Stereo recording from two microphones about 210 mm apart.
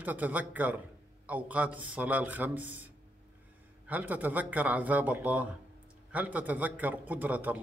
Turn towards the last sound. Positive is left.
turn(degrees=-10)  # may be behind; listen again after turning